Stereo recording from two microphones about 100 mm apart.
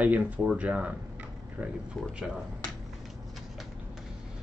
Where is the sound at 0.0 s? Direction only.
15° right (ahead or behind).